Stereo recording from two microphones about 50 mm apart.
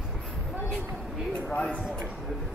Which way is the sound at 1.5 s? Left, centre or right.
Left.